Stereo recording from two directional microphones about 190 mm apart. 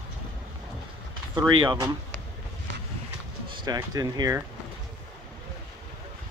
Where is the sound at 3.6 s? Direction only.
20° right (ahead or behind).